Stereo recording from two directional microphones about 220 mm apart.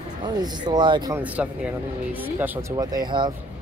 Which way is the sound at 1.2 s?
5° right (ahead or behind).